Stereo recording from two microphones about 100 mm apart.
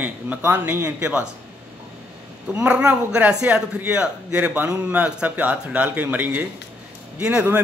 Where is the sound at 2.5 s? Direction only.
10° right (ahead or behind).